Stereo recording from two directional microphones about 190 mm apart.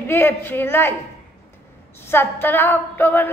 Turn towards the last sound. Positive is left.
turn(degrees=10)  # may be behind; listen again after turning